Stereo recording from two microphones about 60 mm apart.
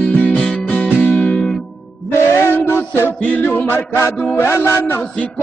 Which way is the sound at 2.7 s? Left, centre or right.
Left.